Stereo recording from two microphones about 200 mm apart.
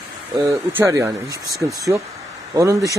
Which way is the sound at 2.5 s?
15° right (ahead or behind).